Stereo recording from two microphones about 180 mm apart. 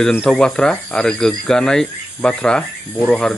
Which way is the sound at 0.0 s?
5° left (ahead or behind).